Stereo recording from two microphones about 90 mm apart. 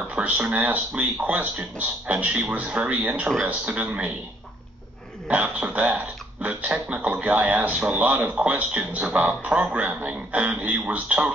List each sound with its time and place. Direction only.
0.1 s speech: 15° right (ahead or behind)
5.3 s speech: 15° right (ahead or behind)